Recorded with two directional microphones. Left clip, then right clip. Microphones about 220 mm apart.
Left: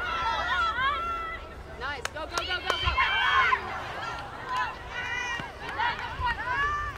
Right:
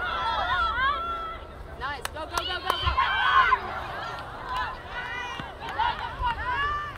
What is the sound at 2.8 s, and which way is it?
Run, 5° left (ahead or behind).